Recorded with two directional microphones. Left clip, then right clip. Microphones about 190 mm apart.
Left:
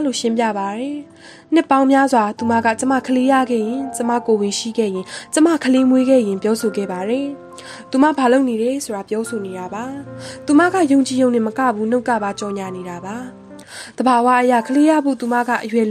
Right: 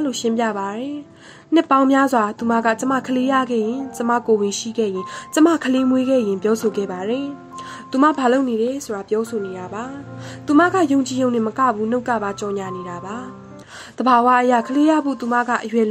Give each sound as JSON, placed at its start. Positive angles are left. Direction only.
{"t": 0.0, "sound": "a woman's voice", "side_deg": 35}
{"t": 13.9, "sound": "a woman's voice", "side_deg": 40}